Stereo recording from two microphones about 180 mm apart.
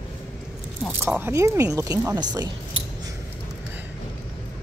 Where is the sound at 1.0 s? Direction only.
10° right (ahead or behind).